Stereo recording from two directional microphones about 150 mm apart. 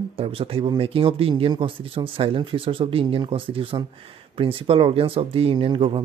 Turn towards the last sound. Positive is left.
turn(degrees=-35)  # may be behind; listen again after turning